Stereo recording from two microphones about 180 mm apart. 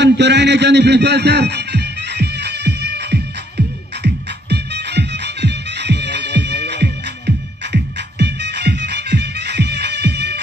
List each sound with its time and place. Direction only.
0.0 s music: 70° right (ahead or behind)